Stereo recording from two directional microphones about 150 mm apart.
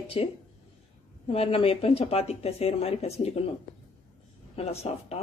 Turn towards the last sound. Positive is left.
turn(degrees=40)  # may be behind; listen again after turning